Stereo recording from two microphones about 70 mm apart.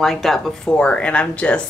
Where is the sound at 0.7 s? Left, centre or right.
Centre.